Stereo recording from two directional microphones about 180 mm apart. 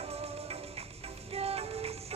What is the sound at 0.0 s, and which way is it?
Music, 35° right (ahead or behind).